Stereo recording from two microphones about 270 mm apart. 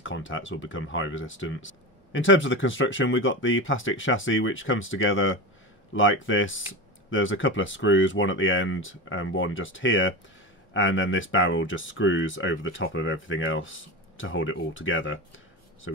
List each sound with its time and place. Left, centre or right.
0.0 s speech: left